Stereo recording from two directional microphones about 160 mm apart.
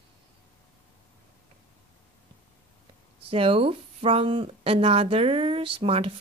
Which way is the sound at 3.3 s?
35° right (ahead or behind).